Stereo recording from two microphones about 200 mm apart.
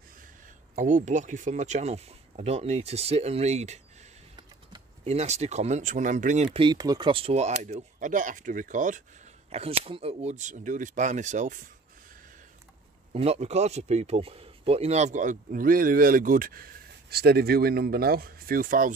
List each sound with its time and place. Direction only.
0.7 s speech: 40° right (ahead or behind)
5.0 s speech: 35° right (ahead or behind)
13.1 s a man's voice: 30° right (ahead or behind)